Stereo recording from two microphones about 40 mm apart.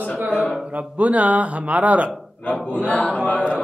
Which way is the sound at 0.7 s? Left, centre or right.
Right.